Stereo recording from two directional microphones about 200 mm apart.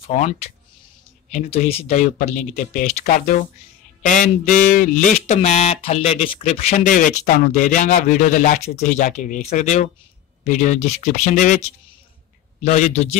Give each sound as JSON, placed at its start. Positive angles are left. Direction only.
{"t": 0.0, "sound": "speech", "side_deg": 35}
{"t": 1.3, "sound": "speech", "side_deg": 30}